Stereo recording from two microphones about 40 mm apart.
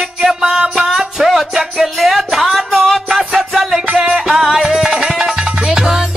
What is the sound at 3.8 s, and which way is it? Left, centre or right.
Music, right.